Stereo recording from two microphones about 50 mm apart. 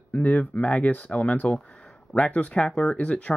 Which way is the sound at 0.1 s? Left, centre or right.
Left.